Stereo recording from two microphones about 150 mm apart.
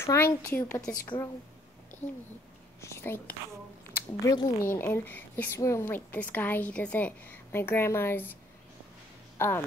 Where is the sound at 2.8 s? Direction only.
15° left (ahead or behind).